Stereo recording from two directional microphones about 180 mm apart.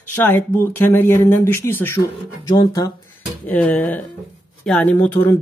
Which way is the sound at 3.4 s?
10° left (ahead or behind).